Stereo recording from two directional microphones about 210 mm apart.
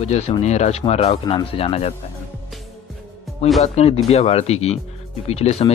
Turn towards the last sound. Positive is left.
turn(degrees=30)  # may be behind; listen again after turning